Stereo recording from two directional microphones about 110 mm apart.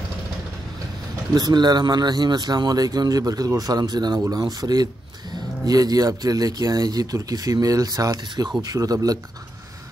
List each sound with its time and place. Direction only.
1.3 s speech: 40° right (ahead or behind)